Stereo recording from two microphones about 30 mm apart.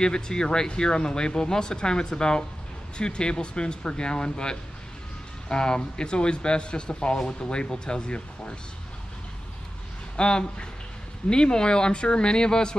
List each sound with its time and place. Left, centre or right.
0.0 s speech: left
10.1 s speech: left